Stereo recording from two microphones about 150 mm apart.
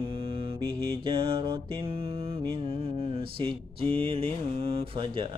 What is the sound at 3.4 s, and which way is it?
Speech, 35° right (ahead or behind).